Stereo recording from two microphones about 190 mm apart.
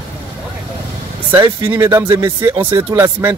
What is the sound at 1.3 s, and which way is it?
A man's voice, 15° right (ahead or behind).